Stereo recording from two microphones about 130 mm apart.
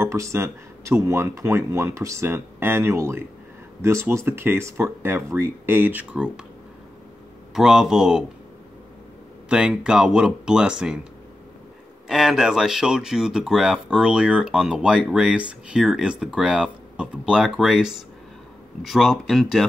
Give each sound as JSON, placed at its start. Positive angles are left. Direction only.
{"t": 0.0, "sound": "speech", "side_deg": -20}
{"t": 7.5, "sound": "speech", "side_deg": -5}
{"t": 9.5, "sound": "speech", "side_deg": -5}
{"t": 12.1, "sound": "speech", "side_deg": -5}